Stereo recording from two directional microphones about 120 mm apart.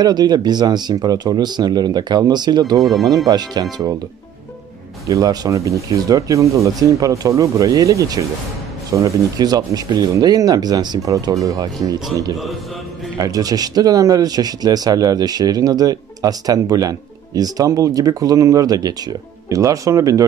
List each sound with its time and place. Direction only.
0.0 s speech: 35° right (ahead or behind)
2.8 s speech: centre (ahead or behind)
3.3 s speech: 35° right (ahead or behind)
5.0 s speech: 30° right (ahead or behind)